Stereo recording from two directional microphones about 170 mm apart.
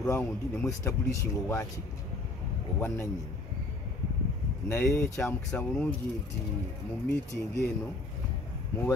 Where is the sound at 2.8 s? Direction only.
15° left (ahead or behind).